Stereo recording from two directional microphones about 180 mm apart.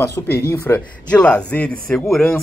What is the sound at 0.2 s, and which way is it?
Speech, 15° left (ahead or behind).